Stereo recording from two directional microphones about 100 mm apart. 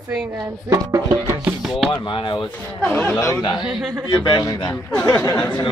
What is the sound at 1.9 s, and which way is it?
Speech, 60° left (ahead or behind).